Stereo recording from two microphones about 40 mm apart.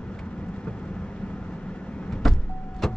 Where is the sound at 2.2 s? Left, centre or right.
Centre.